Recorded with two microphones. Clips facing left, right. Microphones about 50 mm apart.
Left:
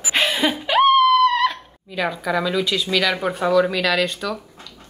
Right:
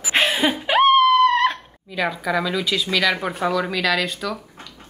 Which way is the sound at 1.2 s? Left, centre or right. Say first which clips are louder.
Right 1 dB; right.